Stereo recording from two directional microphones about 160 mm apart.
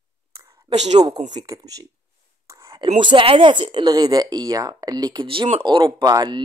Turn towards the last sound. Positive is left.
turn(degrees=-25)  # may be behind; listen again after turning